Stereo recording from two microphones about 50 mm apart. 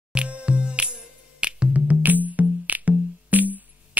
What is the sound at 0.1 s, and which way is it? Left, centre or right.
Music, right.